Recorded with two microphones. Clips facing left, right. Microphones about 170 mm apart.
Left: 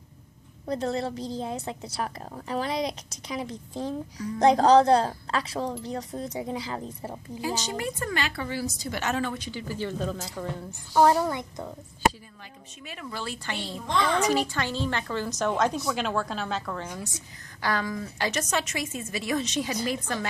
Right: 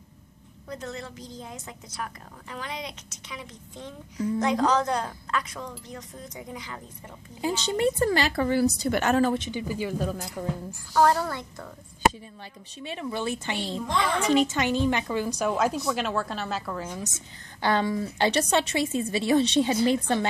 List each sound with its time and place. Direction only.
0.7 s a woman's voice: 35° left (ahead or behind)
7.4 s a woman's voice: 25° right (ahead or behind); by 9.3 s 50° right (ahead or behind)
9.3 s a woman's voice: 20° right (ahead or behind)
10.7 s a woman's voice: 20° left (ahead or behind)
12.8 s a woman's voice: 25° right (ahead or behind); by 17.0 s 5° right (ahead or behind)
17.6 s a woman's voice: 25° right (ahead or behind)